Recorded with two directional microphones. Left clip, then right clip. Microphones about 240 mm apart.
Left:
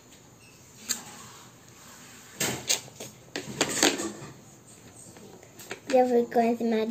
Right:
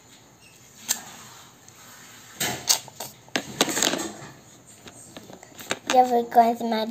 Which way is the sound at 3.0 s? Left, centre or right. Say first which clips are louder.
Right 8 dB; right.